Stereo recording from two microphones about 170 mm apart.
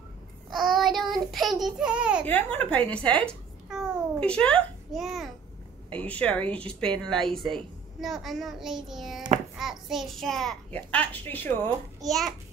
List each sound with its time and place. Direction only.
0.6 s a child's voice: centre (ahead or behind)
2.2 s a woman's voice: 10° left (ahead or behind)
3.6 s babbling: centre (ahead or behind)
5.9 s a woman's voice: 10° left (ahead or behind)